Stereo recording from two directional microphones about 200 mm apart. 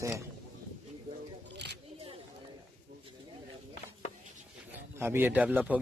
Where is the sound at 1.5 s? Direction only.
55° right (ahead or behind).